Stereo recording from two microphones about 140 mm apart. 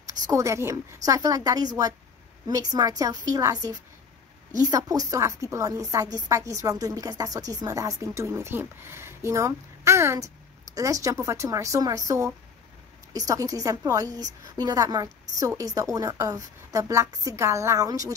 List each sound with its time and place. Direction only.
0.3 s a woman's voice: 20° right (ahead or behind)
13.3 s a woman's voice: 25° right (ahead or behind)